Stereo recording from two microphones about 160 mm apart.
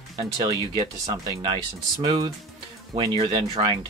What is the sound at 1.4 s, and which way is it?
Speech, 30° right (ahead or behind).